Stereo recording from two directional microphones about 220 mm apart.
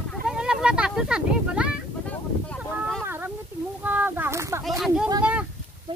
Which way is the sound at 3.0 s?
10° right (ahead or behind).